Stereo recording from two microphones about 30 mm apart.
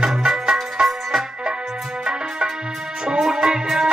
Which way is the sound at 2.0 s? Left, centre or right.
Right.